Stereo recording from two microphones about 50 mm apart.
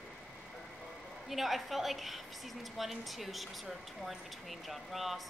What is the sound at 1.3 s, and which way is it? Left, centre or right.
Speech, centre.